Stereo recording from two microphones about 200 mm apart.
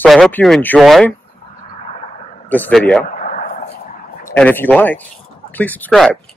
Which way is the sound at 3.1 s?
40° left (ahead or behind).